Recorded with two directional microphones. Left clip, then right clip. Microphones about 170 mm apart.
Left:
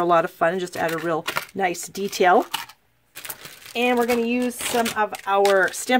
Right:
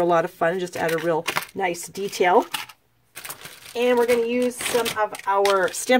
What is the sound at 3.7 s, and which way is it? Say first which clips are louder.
Speech: right 1 dB; 40° left (ahead or behind).